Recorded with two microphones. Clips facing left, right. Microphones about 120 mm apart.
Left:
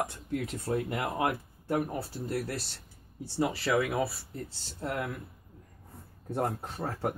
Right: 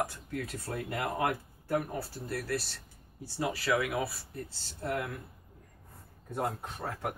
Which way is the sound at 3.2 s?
25° left (ahead or behind).